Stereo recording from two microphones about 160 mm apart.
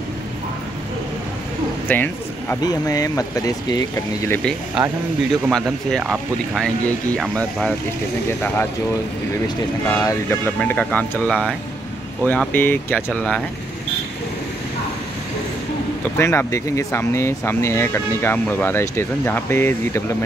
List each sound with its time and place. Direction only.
1.9 s speech: 10° left (ahead or behind)
2.6 s speech: 20° left (ahead or behind)
4.8 s speech: 5° right (ahead or behind)
9.8 s speech: 15° left (ahead or behind)
16.0 s speech: 15° left (ahead or behind)